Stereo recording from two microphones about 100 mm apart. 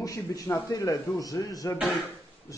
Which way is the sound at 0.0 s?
35° left (ahead or behind).